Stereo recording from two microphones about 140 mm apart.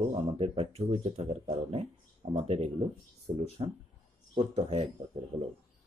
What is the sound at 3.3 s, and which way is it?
Speech, 60° right (ahead or behind).